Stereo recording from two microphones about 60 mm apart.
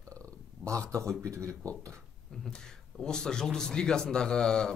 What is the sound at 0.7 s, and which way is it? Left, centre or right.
Speech, right.